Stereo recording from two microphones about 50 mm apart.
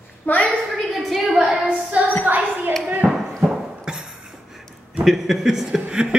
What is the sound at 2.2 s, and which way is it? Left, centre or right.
Speech, right.